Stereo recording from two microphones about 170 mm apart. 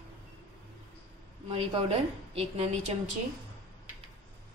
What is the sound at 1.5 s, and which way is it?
A woman's voice, 35° right (ahead or behind).